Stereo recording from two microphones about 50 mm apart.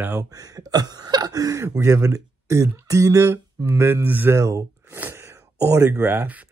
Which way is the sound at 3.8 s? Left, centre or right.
Right.